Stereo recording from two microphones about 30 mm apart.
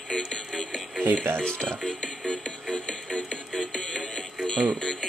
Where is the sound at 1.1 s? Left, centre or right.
Left.